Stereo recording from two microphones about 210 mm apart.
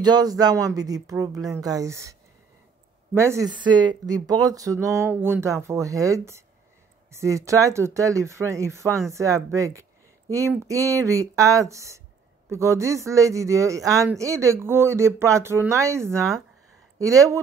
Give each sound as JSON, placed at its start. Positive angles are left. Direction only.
{"t": 0.0, "sound": "speech", "side_deg": -20}
{"t": 3.2, "sound": "speech", "side_deg": -15}